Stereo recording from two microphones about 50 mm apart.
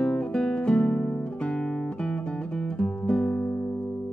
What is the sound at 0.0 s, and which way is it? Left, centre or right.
Music, centre.